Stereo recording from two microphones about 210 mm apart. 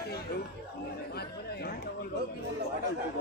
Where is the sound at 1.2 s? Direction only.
50° left (ahead or behind).